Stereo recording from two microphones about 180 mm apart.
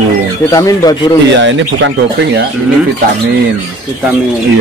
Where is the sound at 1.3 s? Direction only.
90° right.